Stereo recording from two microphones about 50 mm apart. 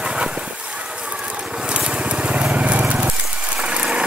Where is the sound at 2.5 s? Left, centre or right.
Right.